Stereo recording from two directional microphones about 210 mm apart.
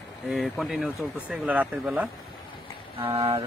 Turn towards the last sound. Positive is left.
turn(degrees=-25)  # may be behind; listen again after turning